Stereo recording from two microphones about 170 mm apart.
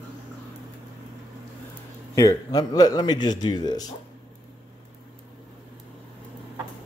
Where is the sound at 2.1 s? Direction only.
20° left (ahead or behind).